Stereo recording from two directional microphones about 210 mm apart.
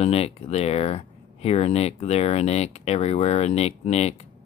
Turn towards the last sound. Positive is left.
turn(degrees=30)  # may be behind; listen again after turning